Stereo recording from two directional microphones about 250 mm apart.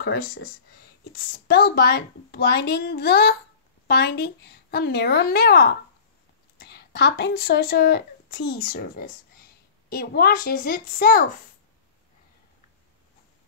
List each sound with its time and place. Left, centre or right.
0.0 s a woman's voice: left